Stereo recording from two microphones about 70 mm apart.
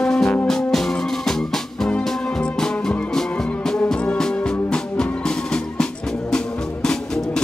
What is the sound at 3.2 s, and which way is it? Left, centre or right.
Music, centre.